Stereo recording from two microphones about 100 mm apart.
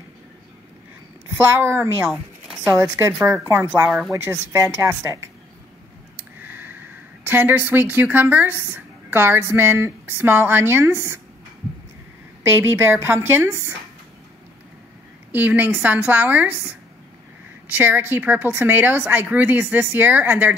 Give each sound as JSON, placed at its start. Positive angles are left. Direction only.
{"t": 1.3, "sound": "speech", "side_deg": -25}
{"t": 2.0, "sound": "a sound", "side_deg": -5}
{"t": 2.6, "sound": "speech", "side_deg": -25}
{"t": 6.1, "sound": "a sound", "side_deg": -20}
{"t": 7.2, "sound": "speech", "side_deg": -20}
{"t": 12.6, "sound": "speech", "side_deg": -25}
{"t": 15.3, "sound": "a woman's voice", "side_deg": -20}